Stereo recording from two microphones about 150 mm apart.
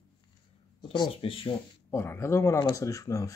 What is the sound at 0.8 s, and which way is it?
Speech, 35° left (ahead or behind).